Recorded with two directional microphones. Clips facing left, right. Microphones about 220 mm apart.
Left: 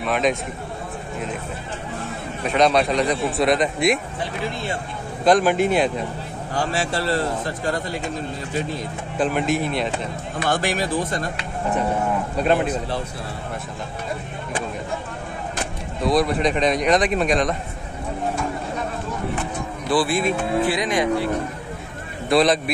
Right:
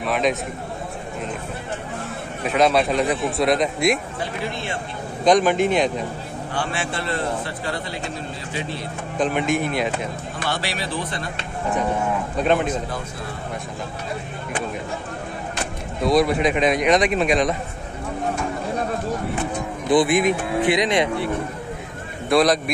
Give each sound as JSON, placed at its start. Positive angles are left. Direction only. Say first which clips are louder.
{"t": 0.0, "sound": "a man's voice", "louder": "even", "side_deg": 0}
{"t": 2.4, "sound": "a man's voice", "louder": "even", "side_deg": -5}
{"t": 5.2, "sound": "a man's voice", "louder": "even", "side_deg": 5}
{"t": 6.5, "sound": "a man's voice", "louder": "left 3 dB", "side_deg": 40}
{"t": 9.2, "sound": "a man's voice", "louder": "even", "side_deg": 0}
{"t": 10.4, "sound": "speech", "louder": "left 5 dB", "side_deg": 45}
{"t": 12.6, "sound": "a man's voice", "louder": "left 1 dB", "side_deg": 35}
{"t": 16.0, "sound": "a man's voice", "louder": "right 1 dB", "side_deg": 0}
{"t": 19.9, "sound": "speech", "louder": "right 3 dB", "side_deg": -20}
{"t": 22.3, "sound": "a man's voice", "louder": "even", "side_deg": 0}